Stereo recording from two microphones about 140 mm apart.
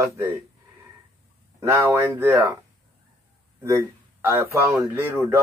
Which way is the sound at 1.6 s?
20° right (ahead or behind).